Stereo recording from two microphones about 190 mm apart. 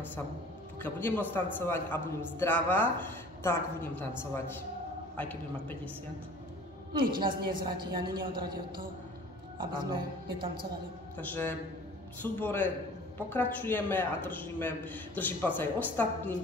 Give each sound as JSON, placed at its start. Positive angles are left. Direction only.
{"t": 0.8, "sound": "a man's voice", "side_deg": 10}
{"t": 6.9, "sound": "a woman's voice", "side_deg": -25}
{"t": 11.1, "sound": "a man's voice", "side_deg": 10}